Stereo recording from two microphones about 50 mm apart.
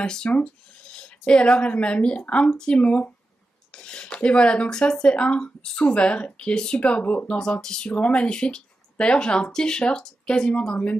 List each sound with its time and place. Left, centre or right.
0.0 s speech: centre